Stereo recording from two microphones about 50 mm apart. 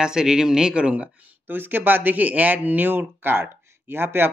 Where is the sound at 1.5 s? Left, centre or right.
Right.